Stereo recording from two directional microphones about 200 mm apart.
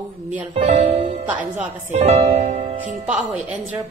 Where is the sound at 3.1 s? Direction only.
5° right (ahead or behind).